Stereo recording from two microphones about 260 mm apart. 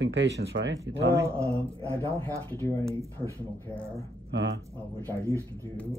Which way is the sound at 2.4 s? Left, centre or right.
Centre.